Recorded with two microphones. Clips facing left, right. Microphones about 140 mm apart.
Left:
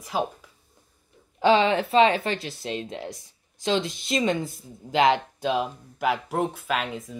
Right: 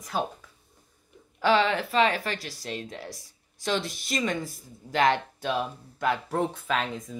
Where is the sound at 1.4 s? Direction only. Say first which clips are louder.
Left 3 dB; 20° left (ahead or behind).